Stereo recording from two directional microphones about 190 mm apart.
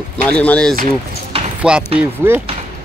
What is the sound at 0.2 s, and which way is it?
Speech, 5° left (ahead or behind).